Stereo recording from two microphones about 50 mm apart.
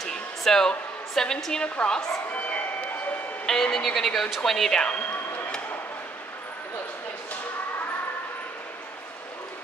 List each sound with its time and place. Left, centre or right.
0.4 s a woman's voice: centre
3.4 s speech: centre